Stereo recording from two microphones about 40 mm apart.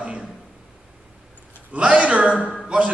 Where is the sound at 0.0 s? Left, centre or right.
Right.